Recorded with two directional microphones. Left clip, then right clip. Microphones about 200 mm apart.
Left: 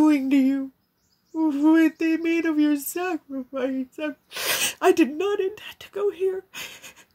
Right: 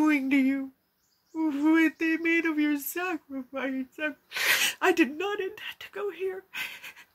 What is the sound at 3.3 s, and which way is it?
Speech, 50° left (ahead or behind).